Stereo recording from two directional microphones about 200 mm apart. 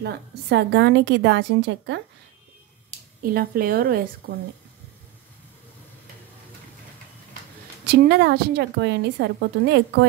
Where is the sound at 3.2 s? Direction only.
50° right (ahead or behind).